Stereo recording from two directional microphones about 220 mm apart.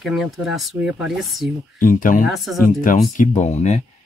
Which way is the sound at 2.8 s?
35° left (ahead or behind).